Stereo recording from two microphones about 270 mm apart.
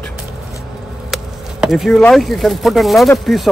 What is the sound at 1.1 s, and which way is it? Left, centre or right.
Speech, centre.